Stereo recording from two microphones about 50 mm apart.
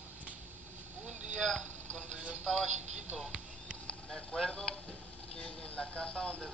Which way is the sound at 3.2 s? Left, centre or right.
Centre.